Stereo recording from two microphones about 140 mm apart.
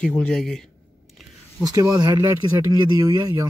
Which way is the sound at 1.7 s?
25° right (ahead or behind).